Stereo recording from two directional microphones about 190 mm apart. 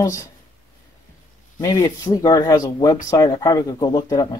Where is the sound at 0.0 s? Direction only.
15° left (ahead or behind).